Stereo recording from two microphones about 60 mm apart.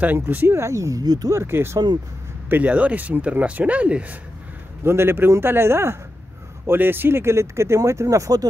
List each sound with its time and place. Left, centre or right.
0.0 s speech: right
0.5 s speech: right
1.4 s speech: right
2.5 s speech: right
4.8 s speech: right